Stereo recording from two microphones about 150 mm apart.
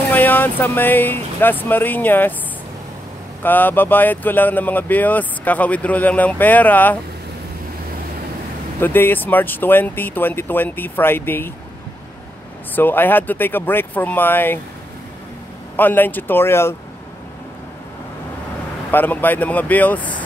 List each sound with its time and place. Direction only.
0.1 s speech: 10° left (ahead or behind)
3.4 s speech: 10° left (ahead or behind)
8.7 s speech: 15° left (ahead or behind)
12.7 s speech: 15° left (ahead or behind)
15.7 s speech: 10° left (ahead or behind)
18.9 s speech: 10° left (ahead or behind)